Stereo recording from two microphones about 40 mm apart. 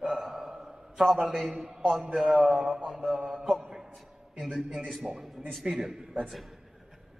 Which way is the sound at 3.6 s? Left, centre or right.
Centre.